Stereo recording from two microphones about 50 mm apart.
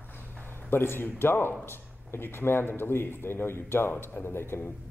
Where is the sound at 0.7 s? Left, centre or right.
Left.